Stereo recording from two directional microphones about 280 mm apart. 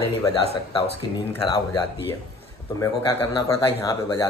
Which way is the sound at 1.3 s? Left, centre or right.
Centre.